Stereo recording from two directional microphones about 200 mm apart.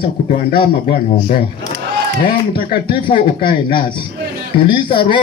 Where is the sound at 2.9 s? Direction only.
25° left (ahead or behind).